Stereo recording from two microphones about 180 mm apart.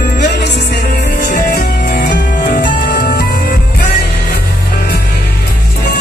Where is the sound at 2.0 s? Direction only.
65° left (ahead or behind).